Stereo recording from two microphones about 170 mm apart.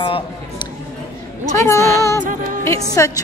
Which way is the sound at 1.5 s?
15° left (ahead or behind).